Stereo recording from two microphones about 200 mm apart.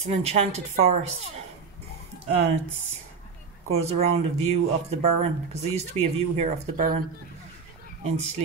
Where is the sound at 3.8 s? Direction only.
30° right (ahead or behind).